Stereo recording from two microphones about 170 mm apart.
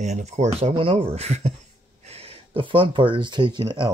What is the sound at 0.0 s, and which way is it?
Speech, 40° right (ahead or behind).